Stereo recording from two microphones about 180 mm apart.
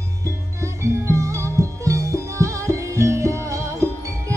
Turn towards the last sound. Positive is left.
turn(degrees=-15)  # may be behind; listen again after turning